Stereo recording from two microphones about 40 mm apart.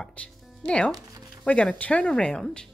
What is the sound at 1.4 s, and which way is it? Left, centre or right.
Speech, left.